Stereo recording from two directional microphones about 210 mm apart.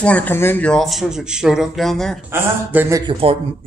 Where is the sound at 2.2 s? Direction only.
10° right (ahead or behind).